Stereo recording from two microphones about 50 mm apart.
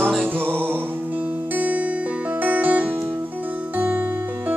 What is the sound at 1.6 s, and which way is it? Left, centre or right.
Music, right.